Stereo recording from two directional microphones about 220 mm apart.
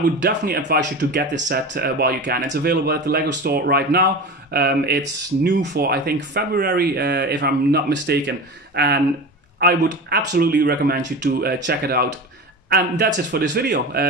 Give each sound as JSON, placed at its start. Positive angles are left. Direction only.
{"t": 0.2, "sound": "speech", "side_deg": -50}